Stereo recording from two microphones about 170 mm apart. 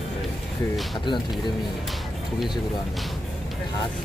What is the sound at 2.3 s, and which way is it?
Speech, centre (ahead or behind).